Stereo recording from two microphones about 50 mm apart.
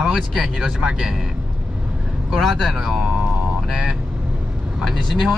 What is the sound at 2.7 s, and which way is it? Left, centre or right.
Speech, centre.